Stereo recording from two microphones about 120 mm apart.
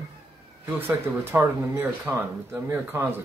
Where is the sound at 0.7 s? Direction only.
15° right (ahead or behind).